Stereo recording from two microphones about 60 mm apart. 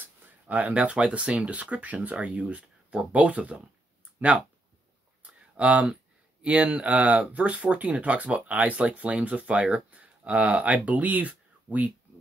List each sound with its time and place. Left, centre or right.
0.0 s speech: right
2.1 s speech: centre
3.1 s speech: right
5.2 s a sound: right
6.4 s speech: right